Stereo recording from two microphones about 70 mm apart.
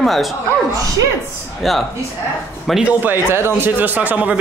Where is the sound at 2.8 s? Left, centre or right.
Right.